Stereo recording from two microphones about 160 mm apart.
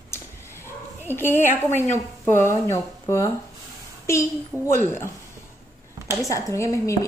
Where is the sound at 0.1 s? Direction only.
15° left (ahead or behind).